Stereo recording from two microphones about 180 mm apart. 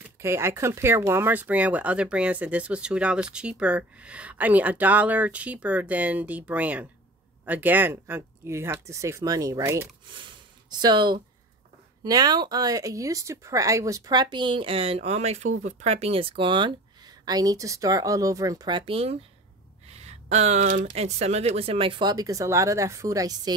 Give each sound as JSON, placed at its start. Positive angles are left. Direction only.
{"t": 0.2, "sound": "speech", "side_deg": -15}
{"t": 19.9, "sound": "a sound", "side_deg": -35}
{"t": 20.9, "sound": "speech", "side_deg": -35}